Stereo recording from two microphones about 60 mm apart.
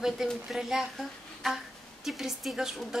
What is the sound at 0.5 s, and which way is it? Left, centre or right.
Speech, centre.